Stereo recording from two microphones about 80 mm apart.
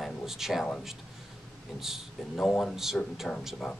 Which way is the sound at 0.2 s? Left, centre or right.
Centre.